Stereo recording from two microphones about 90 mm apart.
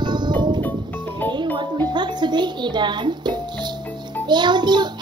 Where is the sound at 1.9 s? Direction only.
55° right (ahead or behind).